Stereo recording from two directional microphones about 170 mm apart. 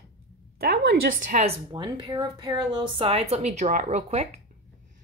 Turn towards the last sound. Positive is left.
turn(degrees=-40)  # may be behind; listen again after turning